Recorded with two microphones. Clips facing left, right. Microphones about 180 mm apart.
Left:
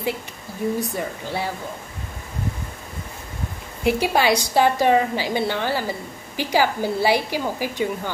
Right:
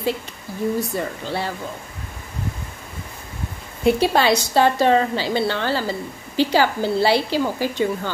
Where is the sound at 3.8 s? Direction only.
10° left (ahead or behind).